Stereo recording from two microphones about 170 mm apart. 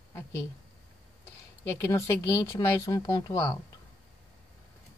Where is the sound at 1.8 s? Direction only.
15° left (ahead or behind).